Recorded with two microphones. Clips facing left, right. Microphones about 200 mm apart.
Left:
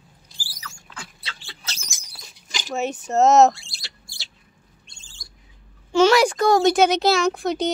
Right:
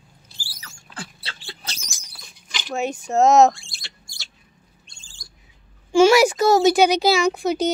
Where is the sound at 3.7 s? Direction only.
35° left (ahead or behind).